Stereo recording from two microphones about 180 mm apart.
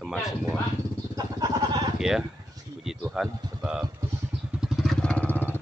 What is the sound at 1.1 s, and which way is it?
Vehicle, 20° right (ahead or behind).